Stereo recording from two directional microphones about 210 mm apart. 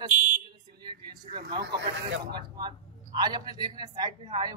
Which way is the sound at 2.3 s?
20° right (ahead or behind).